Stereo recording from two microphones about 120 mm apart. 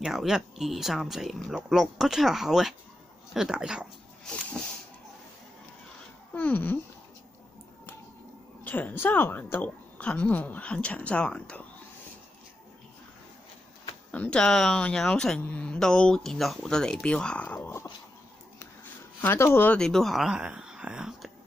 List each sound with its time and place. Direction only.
0.0 s speech: 5° right (ahead or behind)
6.3 s a sound: 15° left (ahead or behind)
8.6 s speech: 15° left (ahead or behind)
14.1 s speech: 10° left (ahead or behind)
19.2 s speech: 20° left (ahead or behind)
19.8 s speech: 5° left (ahead or behind)